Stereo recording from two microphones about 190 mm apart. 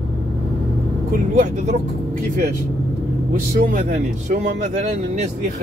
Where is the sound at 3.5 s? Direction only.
45° right (ahead or behind).